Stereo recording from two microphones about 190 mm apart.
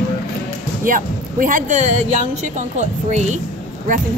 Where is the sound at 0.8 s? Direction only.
45° right (ahead or behind).